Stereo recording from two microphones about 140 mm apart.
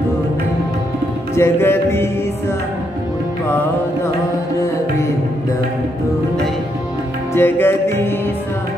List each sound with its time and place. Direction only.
1.3 s music: 20° left (ahead or behind)
7.3 s music: 15° left (ahead or behind)